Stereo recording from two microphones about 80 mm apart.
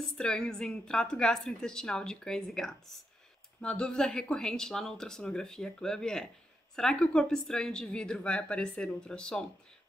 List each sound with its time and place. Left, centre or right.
0.0 s a woman's voice: centre